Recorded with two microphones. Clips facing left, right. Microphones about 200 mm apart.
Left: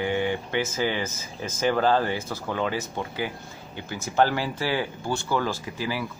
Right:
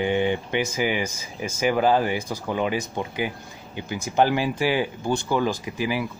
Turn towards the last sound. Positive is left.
turn(degrees=-15)  # may be behind; listen again after turning